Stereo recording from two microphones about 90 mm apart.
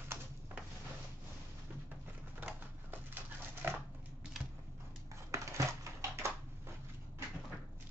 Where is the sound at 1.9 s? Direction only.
20° right (ahead or behind).